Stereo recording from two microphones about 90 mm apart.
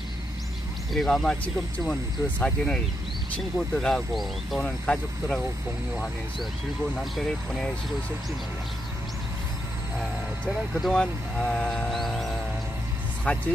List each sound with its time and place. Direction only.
0.9 s speech: 5° left (ahead or behind)
7.2 s speech: 10° left (ahead or behind)
10.4 s speech: 10° left (ahead or behind)
11.9 s music: centre (ahead or behind)
13.2 s speech: 15° left (ahead or behind)